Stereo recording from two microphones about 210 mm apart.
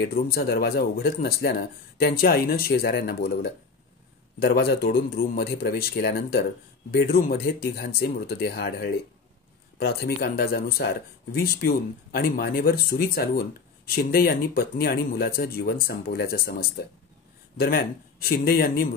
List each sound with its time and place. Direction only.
0.0 s speech: 45° left (ahead or behind)